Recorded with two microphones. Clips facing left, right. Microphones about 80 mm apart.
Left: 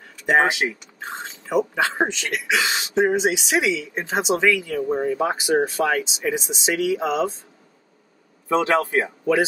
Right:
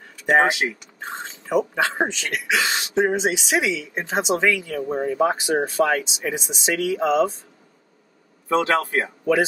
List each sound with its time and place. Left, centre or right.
0.3 s speech: centre
8.5 s speech: centre